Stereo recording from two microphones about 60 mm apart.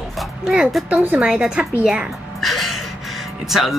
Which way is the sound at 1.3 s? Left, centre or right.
Centre.